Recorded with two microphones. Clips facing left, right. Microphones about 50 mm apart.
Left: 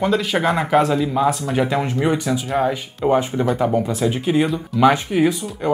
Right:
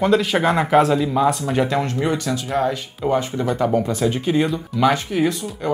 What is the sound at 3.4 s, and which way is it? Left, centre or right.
Speech, centre.